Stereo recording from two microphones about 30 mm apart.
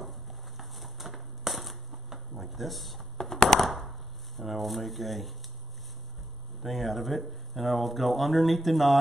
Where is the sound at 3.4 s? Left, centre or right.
Centre.